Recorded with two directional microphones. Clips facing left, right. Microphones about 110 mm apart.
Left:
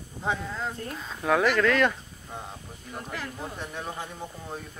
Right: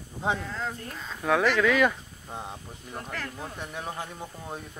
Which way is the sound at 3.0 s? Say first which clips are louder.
Left 1 dB; 5° left (ahead or behind).